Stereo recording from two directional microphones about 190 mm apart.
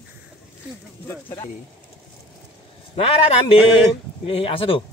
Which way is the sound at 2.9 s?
30° left (ahead or behind).